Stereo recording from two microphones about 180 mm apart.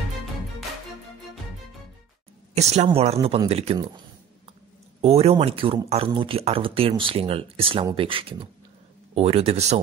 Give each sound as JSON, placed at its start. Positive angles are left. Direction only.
{"t": 2.5, "sound": "speech", "side_deg": -35}
{"t": 5.0, "sound": "speech", "side_deg": -35}